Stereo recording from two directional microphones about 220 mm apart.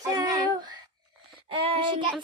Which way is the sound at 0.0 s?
15° right (ahead or behind).